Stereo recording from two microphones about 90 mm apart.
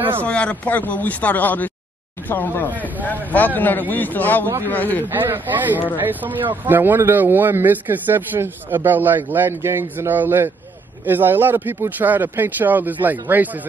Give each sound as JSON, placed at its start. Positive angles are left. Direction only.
{"t": 0.2, "sound": "speech", "side_deg": 15}
{"t": 5.1, "sound": "speech", "side_deg": -20}